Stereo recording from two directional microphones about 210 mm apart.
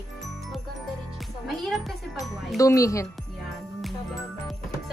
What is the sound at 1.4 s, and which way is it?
Speech, centre (ahead or behind).